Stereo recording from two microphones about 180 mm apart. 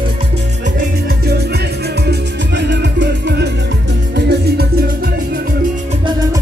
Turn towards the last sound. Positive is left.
turn(degrees=-60)  # may be behind; listen again after turning